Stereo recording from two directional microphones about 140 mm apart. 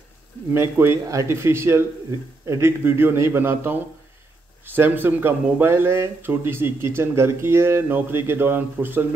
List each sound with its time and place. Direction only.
0.5 s speech: 15° right (ahead or behind)